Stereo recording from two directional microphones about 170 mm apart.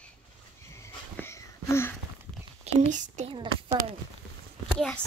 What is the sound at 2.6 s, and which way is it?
Speech, 40° right (ahead or behind).